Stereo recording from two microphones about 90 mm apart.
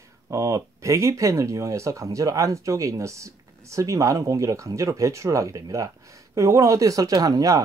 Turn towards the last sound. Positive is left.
turn(degrees=-40)  # may be behind; listen again after turning